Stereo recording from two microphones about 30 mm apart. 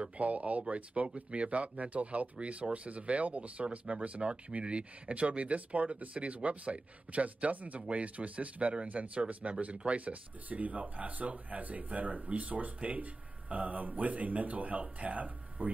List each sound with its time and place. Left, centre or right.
0.2 s speech: right